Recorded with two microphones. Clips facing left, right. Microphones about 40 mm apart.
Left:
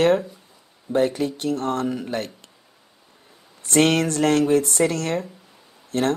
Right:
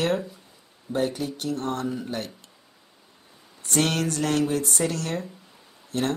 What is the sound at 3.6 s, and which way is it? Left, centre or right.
Speech, left.